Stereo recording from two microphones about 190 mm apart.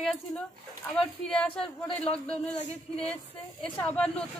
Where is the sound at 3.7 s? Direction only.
10° left (ahead or behind).